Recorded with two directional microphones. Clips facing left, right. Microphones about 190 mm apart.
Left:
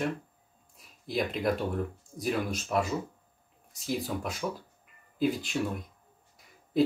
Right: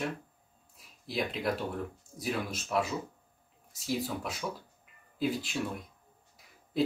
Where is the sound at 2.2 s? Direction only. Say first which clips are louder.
Left 4 dB; centre (ahead or behind).